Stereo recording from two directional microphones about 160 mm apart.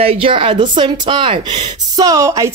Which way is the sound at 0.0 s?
35° right (ahead or behind).